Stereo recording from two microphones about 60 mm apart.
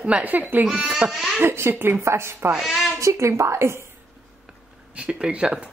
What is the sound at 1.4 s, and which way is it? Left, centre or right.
A woman's voice, right.